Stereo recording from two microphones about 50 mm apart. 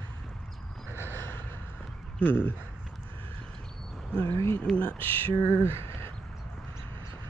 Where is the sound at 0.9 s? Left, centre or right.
Right.